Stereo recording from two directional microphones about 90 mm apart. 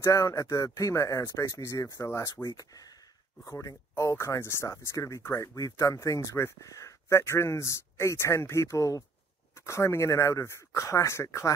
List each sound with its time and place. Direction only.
0.0 s speech: 35° left (ahead or behind)
3.4 s speech: 30° left (ahead or behind)